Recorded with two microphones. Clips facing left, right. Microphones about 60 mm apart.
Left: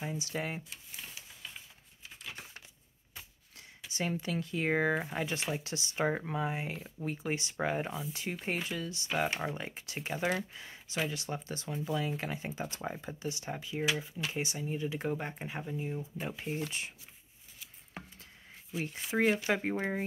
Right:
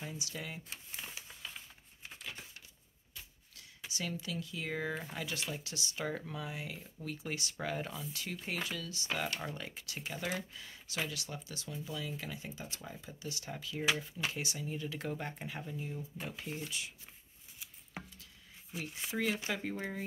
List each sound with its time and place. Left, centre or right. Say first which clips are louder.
0.0 s speech: left 7 dB; left
3.9 s speech: left 6 dB; left
13.3 s speech: left 2 dB; left
13.9 s speech: left 3 dB; centre
14.3 s speech: left 4 dB; left
18.8 s speech: left 6 dB; left